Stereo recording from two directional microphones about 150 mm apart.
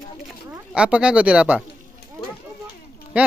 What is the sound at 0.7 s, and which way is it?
Speech, 5° right (ahead or behind).